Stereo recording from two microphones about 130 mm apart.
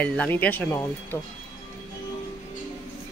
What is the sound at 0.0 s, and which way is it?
Speech, 10° left (ahead or behind).